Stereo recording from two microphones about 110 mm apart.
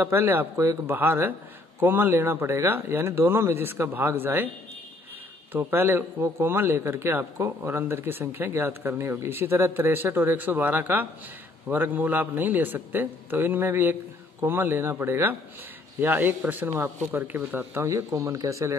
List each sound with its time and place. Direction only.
0.0 s speech: 20° right (ahead or behind)
5.5 s speech: 20° right (ahead or behind)
6.1 s a man's voice: 30° right (ahead or behind)
6.4 s a man's voice: 20° right (ahead or behind)